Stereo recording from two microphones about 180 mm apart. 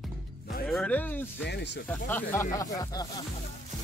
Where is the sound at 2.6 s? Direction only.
20° left (ahead or behind).